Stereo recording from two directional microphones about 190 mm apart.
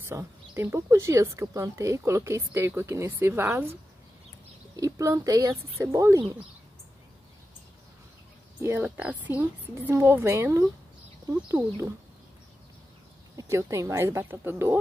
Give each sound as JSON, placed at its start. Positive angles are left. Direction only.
{"t": 0.0, "sound": "speech", "side_deg": -15}
{"t": 4.7, "sound": "speech", "side_deg": -15}
{"t": 8.6, "sound": "speech", "side_deg": -10}
{"t": 13.4, "sound": "speech", "side_deg": -15}